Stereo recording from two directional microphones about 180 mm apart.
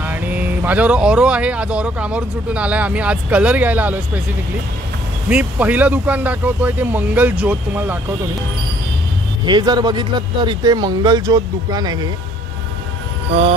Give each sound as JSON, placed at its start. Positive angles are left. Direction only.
{"t": 0.0, "sound": "speech", "side_deg": -10}
{"t": 5.3, "sound": "speech", "side_deg": -10}
{"t": 9.4, "sound": "speech", "side_deg": -25}